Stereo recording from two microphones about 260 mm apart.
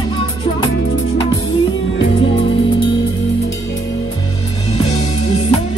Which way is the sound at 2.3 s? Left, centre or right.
Left.